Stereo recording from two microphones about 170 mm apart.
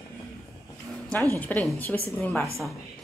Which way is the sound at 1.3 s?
10° left (ahead or behind).